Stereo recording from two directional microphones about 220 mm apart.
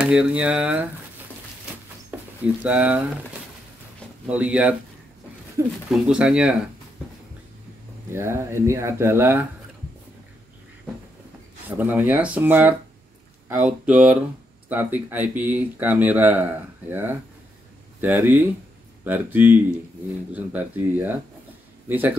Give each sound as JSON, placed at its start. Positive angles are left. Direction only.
{"t": 0.0, "sound": "speech", "side_deg": -5}
{"t": 2.0, "sound": "speech", "side_deg": -5}
{"t": 4.3, "sound": "speech", "side_deg": -5}
{"t": 5.9, "sound": "speech", "side_deg": -5}
{"t": 8.1, "sound": "speech", "side_deg": -10}
{"t": 11.7, "sound": "speech", "side_deg": -10}